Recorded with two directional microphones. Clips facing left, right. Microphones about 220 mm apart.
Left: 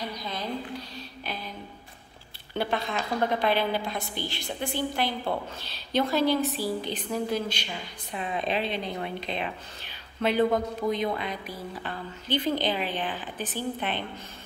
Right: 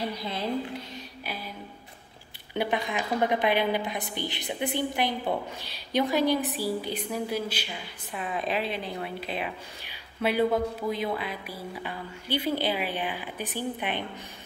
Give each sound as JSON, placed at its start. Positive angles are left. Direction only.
{"t": 0.0, "sound": "a woman's voice", "side_deg": -30}
{"t": 1.2, "sound": "music", "side_deg": -10}
{"t": 2.5, "sound": "a woman's voice", "side_deg": -15}